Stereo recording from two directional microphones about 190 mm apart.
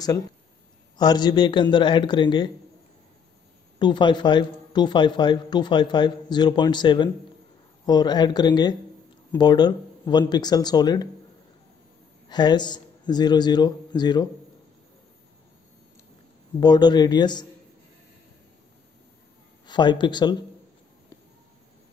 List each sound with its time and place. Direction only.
0.9 s a man's voice: 20° left (ahead or behind)
3.8 s a man's voice: 25° left (ahead or behind)
12.3 s speech: 20° left (ahead or behind)
16.5 s a man's voice: 20° left (ahead or behind)
19.6 s speech: 25° left (ahead or behind)